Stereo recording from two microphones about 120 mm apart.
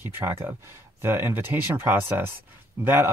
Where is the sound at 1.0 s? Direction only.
20° right (ahead or behind).